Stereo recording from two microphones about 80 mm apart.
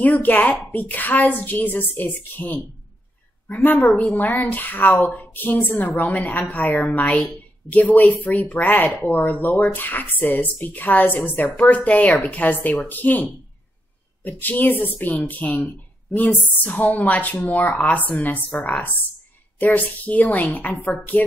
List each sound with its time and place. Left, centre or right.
0.0 s speech: left